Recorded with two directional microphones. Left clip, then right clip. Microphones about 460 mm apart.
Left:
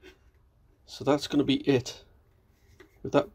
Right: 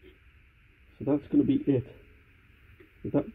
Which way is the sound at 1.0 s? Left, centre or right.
Centre.